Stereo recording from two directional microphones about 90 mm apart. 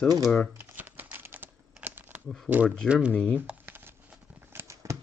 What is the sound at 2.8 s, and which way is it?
Speech, 10° right (ahead or behind).